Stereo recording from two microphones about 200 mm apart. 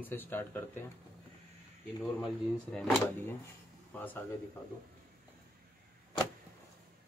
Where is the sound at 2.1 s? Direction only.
5° left (ahead or behind).